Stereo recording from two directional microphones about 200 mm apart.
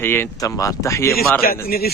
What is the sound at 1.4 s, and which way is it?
Speech, 45° left (ahead or behind).